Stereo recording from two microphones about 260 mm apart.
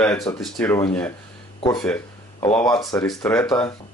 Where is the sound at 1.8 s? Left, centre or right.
Centre.